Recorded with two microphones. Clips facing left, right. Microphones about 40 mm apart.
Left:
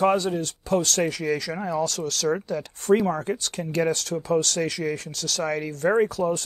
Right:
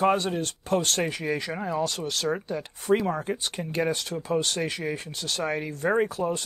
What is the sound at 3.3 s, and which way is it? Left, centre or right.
Speech, right.